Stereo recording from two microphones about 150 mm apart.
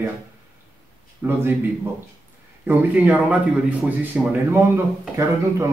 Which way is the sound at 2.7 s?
10° right (ahead or behind).